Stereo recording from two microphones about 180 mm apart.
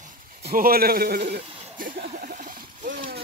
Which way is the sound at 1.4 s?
35° right (ahead or behind).